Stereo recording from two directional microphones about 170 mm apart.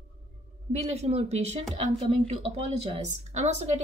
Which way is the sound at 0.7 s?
40° right (ahead or behind).